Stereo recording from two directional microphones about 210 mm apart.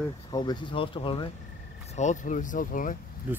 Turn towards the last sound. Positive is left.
turn(degrees=-10)  # may be behind; listen again after turning